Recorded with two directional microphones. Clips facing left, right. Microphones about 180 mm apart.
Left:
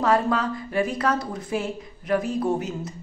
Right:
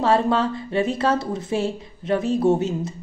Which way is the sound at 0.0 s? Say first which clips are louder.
Right 3 dB; 30° right (ahead or behind).